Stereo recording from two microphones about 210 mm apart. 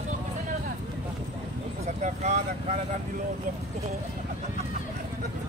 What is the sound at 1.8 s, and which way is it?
Vehicle, 30° right (ahead or behind).